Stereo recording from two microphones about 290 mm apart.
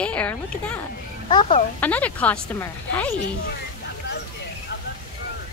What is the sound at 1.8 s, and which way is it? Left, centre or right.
A woman's voice, centre.